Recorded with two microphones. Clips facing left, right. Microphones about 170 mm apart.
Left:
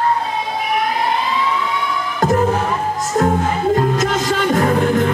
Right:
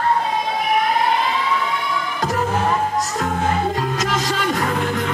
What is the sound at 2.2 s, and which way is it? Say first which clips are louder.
Music: left 6 dB; 50° left (ahead or behind).